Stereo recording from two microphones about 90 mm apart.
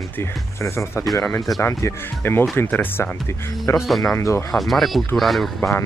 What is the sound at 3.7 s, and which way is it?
Speech, 35° left (ahead or behind).